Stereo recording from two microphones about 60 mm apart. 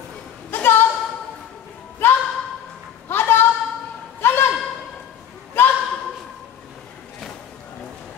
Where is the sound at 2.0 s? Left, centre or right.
Left.